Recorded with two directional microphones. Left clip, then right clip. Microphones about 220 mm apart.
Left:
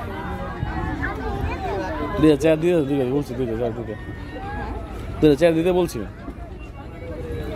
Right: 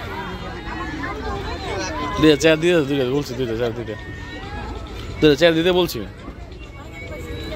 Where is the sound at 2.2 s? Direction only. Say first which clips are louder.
Right 2 dB; centre (ahead or behind).